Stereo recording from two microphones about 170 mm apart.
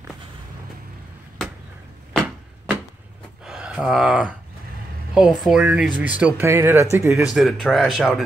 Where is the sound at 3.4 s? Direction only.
5° right (ahead or behind).